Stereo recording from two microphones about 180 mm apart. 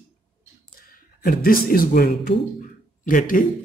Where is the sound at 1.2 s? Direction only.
55° left (ahead or behind).